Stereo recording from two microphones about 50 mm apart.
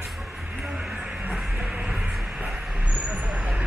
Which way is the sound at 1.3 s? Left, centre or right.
Centre.